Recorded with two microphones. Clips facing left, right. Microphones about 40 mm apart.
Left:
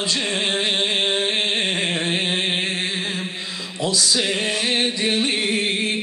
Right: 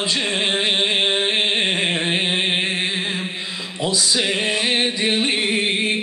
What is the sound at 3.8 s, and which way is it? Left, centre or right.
Music, centre.